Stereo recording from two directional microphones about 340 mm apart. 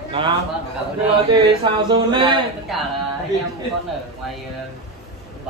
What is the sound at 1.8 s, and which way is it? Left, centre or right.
Speech, centre.